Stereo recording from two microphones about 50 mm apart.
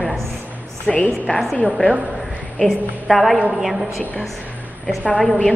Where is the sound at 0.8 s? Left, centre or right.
Left.